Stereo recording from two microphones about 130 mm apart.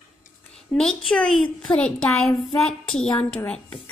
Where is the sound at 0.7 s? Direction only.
5° left (ahead or behind).